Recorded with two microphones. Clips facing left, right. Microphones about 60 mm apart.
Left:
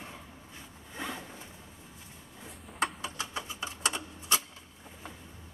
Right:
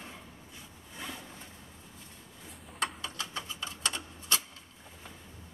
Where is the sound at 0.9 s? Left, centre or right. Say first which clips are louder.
Left 4 dB; left.